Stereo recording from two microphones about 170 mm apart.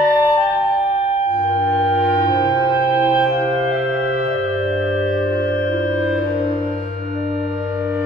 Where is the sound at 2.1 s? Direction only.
20° left (ahead or behind).